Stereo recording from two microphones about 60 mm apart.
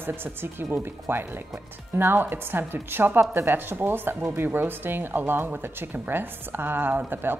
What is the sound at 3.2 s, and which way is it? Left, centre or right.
Speech, right.